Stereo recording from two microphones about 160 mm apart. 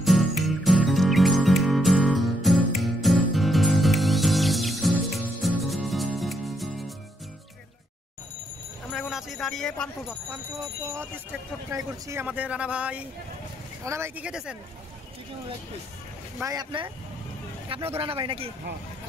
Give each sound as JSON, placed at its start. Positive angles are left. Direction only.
{"t": 0.0, "sound": "music", "side_deg": 0}
{"t": 8.9, "sound": "a sound", "side_deg": 0}
{"t": 11.7, "sound": "speech", "side_deg": -15}
{"t": 16.3, "sound": "speech", "side_deg": -25}